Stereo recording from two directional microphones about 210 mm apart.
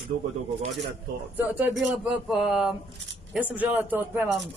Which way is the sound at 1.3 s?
10° right (ahead or behind).